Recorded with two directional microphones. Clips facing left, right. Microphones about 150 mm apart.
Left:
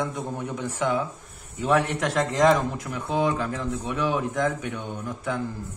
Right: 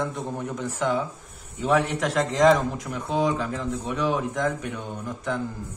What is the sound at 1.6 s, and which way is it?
A man's voice, centre (ahead or behind).